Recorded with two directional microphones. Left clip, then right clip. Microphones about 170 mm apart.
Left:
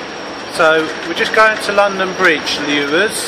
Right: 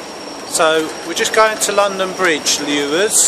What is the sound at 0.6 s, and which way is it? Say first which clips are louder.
Speech: left 2 dB; 20° right (ahead or behind).